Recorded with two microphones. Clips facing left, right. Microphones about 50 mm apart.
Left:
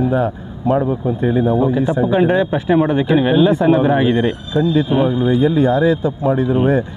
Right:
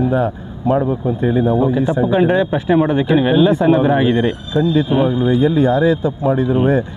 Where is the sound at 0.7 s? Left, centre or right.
Centre.